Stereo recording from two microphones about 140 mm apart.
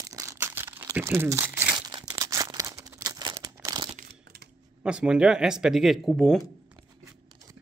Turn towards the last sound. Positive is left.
turn(degrees=0)  # may be behind; listen again after turning